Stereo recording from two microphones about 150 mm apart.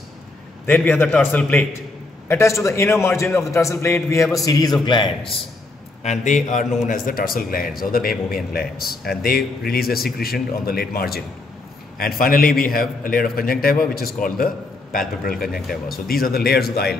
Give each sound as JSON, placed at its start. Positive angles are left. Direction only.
{"t": 0.7, "sound": "a man's voice", "side_deg": 10}
{"t": 6.0, "sound": "a man's voice", "side_deg": 55}
{"t": 8.5, "sound": "speech", "side_deg": 90}
{"t": 12.0, "sound": "a man's voice", "side_deg": 75}